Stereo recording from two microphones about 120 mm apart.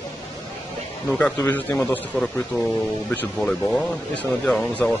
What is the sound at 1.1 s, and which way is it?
Speech, 15° left (ahead or behind).